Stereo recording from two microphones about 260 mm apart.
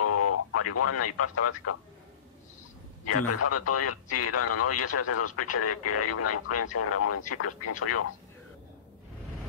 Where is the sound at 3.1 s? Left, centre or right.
Left.